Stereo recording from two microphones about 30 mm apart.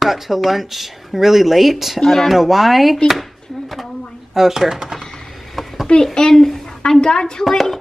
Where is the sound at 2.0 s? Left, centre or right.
Centre.